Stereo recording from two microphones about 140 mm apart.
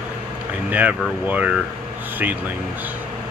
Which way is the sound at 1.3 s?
10° right (ahead or behind).